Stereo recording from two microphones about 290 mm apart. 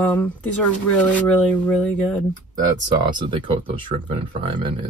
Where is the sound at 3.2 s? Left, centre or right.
Centre.